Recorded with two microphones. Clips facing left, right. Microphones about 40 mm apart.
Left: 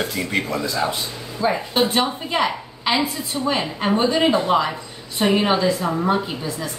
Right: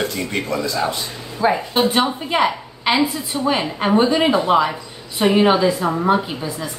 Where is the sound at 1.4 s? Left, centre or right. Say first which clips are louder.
Right 3 dB; centre.